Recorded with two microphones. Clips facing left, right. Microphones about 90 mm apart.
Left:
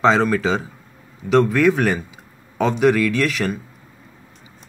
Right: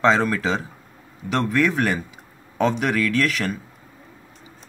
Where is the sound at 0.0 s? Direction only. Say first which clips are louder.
Left 2 dB; centre (ahead or behind).